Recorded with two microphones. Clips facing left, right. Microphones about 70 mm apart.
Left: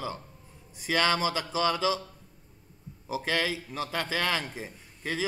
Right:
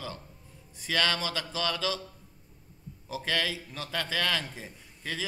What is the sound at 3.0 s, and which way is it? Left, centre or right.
A man's voice, centre.